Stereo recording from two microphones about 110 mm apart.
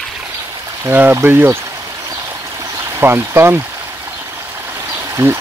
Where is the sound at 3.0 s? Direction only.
20° right (ahead or behind).